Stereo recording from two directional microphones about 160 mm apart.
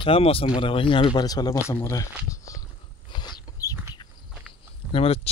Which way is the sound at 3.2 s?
25° left (ahead or behind).